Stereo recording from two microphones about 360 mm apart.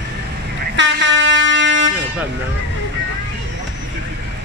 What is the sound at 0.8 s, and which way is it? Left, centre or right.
Vehicle horn, right.